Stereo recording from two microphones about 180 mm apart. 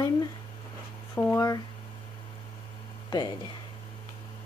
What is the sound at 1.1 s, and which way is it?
Speech, 20° left (ahead or behind).